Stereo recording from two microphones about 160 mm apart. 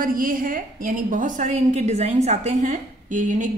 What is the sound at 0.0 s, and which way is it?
A woman's voice, 60° right (ahead or behind).